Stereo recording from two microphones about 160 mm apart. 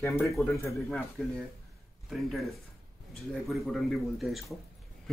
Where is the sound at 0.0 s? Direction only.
15° left (ahead or behind).